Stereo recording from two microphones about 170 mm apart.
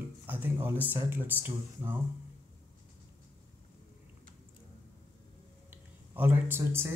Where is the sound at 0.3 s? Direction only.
10° right (ahead or behind).